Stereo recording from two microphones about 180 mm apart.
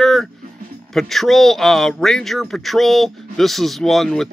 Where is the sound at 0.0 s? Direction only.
Centre (ahead or behind).